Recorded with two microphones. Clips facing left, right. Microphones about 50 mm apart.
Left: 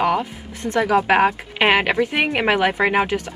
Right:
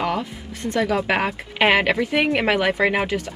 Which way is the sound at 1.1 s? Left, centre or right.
Centre.